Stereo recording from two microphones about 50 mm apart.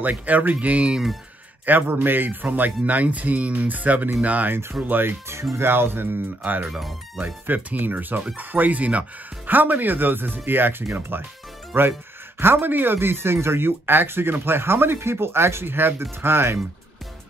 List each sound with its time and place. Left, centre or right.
0.0 s speech: right
1.7 s speech: right
2.4 s speech: right
4.5 s speech: right
4.8 s speech: right
6.4 s speech: right
6.7 s speech: centre
7.4 s speech: right